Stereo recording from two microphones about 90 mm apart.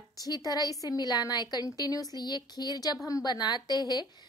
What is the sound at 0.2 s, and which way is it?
A woman's voice, 45° left (ahead or behind).